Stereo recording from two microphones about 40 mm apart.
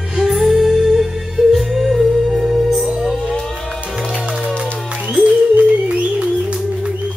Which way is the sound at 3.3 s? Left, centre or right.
Centre.